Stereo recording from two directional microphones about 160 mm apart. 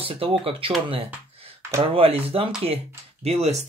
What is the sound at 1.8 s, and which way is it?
Speech, 35° right (ahead or behind).